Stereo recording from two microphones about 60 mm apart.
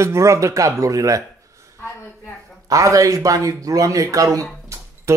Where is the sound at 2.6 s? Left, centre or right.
Right.